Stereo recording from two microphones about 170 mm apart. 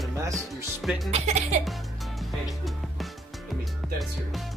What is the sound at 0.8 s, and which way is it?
Speech, centre (ahead or behind).